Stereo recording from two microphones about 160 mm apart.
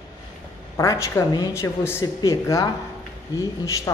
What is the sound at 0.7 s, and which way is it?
A woman's voice, 20° left (ahead or behind).